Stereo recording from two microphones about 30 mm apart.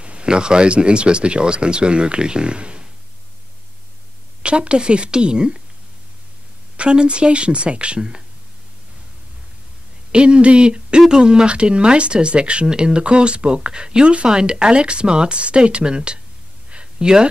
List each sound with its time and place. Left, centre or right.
0.0 s speech: right
4.4 s speech: right
6.8 s speech: right
10.1 s speech: right
11.5 s speech: right
16.7 s a sound: right